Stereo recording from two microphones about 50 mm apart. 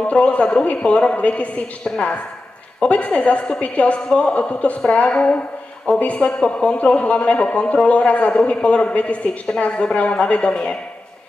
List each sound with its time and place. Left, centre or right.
0.0 s a woman's voice: left
2.8 s a woman's voice: left